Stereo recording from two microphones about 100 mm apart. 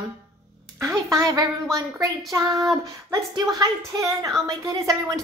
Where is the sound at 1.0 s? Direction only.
35° right (ahead or behind).